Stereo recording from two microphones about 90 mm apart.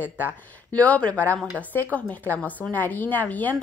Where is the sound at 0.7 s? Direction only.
15° left (ahead or behind).